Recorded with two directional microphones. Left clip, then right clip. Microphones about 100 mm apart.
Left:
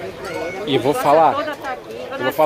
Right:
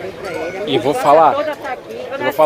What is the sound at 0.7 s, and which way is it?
Speech, 90° left.